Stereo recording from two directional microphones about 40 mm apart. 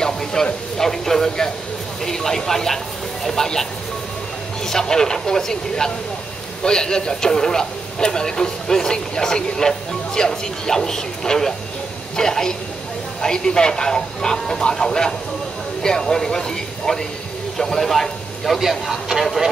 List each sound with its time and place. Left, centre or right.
0.0 s speech: centre
4.6 s speech: centre
18.6 s a man's voice: centre